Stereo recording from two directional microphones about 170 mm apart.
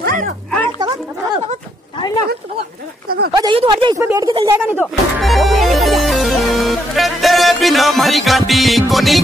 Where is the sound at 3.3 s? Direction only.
25° right (ahead or behind).